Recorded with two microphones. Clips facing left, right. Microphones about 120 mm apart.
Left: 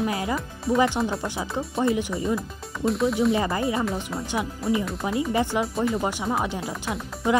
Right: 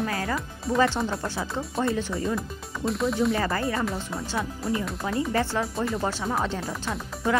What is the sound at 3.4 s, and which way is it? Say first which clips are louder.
Speech: left 2 dB; 20° left (ahead or behind).